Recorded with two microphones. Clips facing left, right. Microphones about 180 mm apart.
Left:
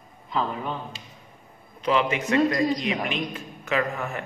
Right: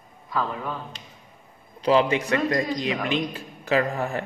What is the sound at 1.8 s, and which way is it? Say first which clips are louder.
Speech: right 4 dB; 35° right (ahead or behind).